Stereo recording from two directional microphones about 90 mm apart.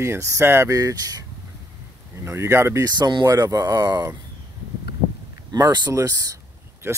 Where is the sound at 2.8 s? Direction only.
45° right (ahead or behind).